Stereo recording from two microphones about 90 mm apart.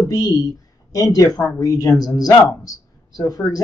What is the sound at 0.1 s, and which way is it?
Speech, 40° left (ahead or behind).